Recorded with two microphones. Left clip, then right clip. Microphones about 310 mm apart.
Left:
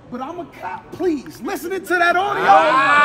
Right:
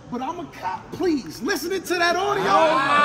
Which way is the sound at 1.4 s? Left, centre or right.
Centre.